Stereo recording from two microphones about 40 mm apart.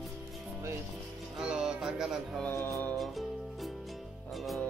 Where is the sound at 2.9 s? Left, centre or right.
Centre.